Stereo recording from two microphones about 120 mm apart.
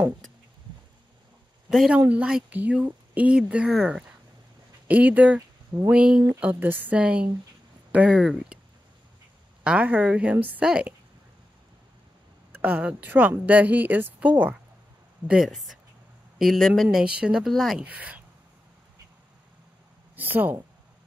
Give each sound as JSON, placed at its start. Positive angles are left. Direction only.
{"t": 1.7, "sound": "speech", "side_deg": -5}
{"t": 9.6, "sound": "speech", "side_deg": -10}
{"t": 12.5, "sound": "speech", "side_deg": -15}
{"t": 15.2, "sound": "speech", "side_deg": -5}
{"t": 17.8, "sound": "speech", "side_deg": -10}
{"t": 20.2, "sound": "speech", "side_deg": -15}